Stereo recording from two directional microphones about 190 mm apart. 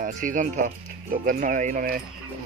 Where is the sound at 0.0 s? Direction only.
45° right (ahead or behind).